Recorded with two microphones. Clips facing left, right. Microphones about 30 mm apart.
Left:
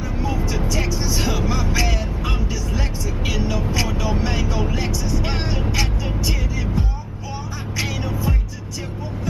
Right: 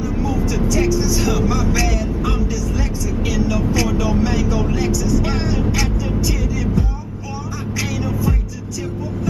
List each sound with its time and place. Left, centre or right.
0.2 s vehicle: left
8.0 s music: left